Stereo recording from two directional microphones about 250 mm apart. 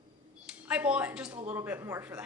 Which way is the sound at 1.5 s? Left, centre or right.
Centre.